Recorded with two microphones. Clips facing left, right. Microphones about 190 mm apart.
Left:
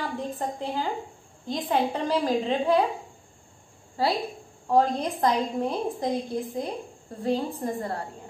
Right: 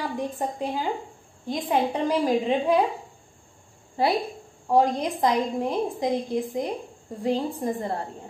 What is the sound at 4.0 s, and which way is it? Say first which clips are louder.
A woman's voice: right 2 dB; 20° right (ahead or behind).